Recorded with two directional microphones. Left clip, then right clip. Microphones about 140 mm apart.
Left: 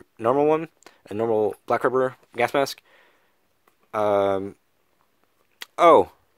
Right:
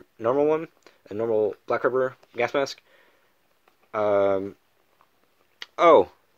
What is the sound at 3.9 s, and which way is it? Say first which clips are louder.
Speech: left 1 dB; 40° left (ahead or behind).